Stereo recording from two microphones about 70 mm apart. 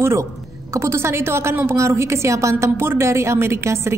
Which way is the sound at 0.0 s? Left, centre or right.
Right.